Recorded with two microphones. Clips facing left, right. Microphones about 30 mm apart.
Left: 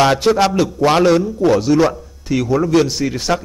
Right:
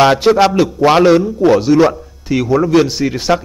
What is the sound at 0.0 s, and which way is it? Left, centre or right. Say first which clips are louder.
A man's voice: right 4 dB; centre.